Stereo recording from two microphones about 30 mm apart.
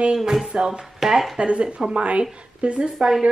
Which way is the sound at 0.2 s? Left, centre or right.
Centre.